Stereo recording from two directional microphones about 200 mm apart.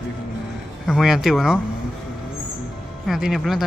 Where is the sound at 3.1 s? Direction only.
Centre (ahead or behind).